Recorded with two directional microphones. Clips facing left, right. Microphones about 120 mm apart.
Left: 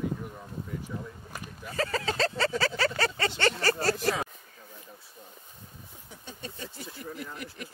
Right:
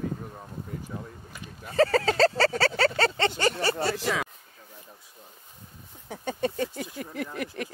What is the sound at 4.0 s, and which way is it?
Speech, 90° right.